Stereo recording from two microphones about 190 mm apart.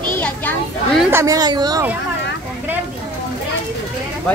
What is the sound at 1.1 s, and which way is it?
Speech, 20° right (ahead or behind).